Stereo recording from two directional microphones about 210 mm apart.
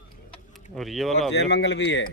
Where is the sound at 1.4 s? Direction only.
55° left (ahead or behind).